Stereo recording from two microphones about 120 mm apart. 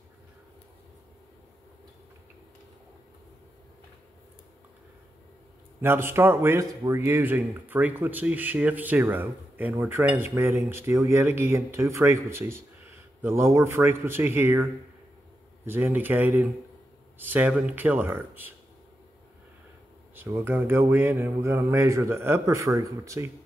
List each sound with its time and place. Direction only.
5.8 s speech: 20° right (ahead or behind)
7.1 s speech: 20° right (ahead or behind)
20.2 s speech: 20° right (ahead or behind)